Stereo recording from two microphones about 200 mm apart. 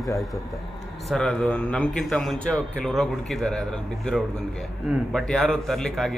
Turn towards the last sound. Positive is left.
turn(degrees=0)  # may be behind; listen again after turning